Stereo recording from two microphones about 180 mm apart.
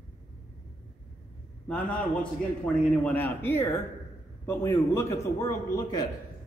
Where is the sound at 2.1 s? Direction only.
Centre (ahead or behind); by 6.1 s 20° left (ahead or behind).